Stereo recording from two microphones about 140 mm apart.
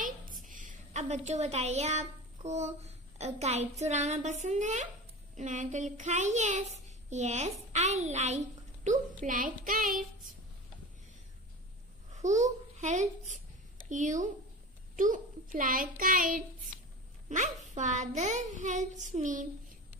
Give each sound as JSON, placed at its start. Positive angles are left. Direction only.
{"t": 0.5, "sound": "a woman's voice", "side_deg": -65}
{"t": 12.1, "sound": "a child's voice", "side_deg": -55}
{"t": 17.3, "sound": "a child's voice", "side_deg": -60}